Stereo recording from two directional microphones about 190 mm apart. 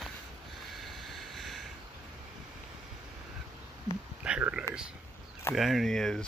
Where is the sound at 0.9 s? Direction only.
Centre (ahead or behind).